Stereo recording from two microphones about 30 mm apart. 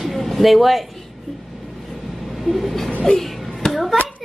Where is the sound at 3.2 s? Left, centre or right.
Centre.